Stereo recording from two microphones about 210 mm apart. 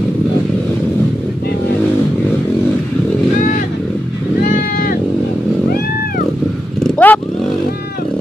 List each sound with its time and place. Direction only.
4.5 s sheep: 45° left (ahead or behind)
6.8 s motorcycle: 10° left (ahead or behind)